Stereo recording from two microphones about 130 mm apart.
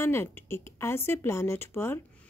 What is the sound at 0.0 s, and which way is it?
Speech, 20° left (ahead or behind).